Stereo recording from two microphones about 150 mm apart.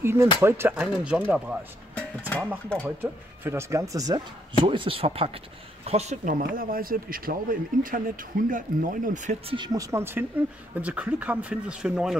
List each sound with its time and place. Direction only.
0.0 s speech: 15° right (ahead or behind)
2.0 s music: 10° left (ahead or behind)
3.0 s speech: 15° right (ahead or behind)
4.6 s speech: 35° right (ahead or behind); by 9.4 s 55° right (ahead or behind)
9.5 s speech: 30° right (ahead or behind); by 12.2 s 5° right (ahead or behind)